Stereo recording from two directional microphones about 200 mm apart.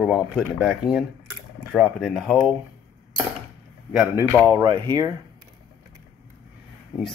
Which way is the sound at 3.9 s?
10° right (ahead or behind).